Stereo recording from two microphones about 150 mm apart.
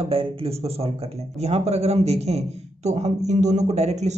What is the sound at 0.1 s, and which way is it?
A man's voice, 40° right (ahead or behind).